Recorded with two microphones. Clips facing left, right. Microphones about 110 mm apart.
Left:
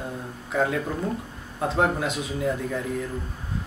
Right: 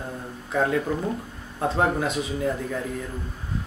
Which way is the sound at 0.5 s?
Centre (ahead or behind).